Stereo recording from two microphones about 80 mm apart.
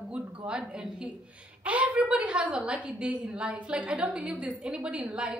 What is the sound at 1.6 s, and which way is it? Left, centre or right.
A woman's voice, centre.